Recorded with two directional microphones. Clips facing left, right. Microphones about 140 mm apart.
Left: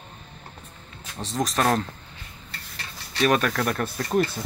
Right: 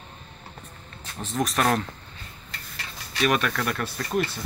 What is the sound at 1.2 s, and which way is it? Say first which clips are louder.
Speech: even; 35° left (ahead or behind).